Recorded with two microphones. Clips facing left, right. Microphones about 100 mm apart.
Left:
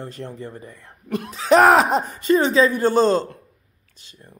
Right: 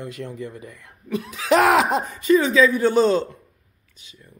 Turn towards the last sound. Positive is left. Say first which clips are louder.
# even
turn(degrees=35)  # may be behind; listen again after turning